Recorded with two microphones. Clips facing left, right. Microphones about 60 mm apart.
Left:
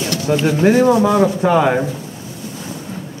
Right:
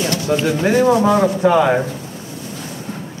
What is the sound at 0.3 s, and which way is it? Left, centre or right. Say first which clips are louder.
A man's voice: left 3 dB; centre.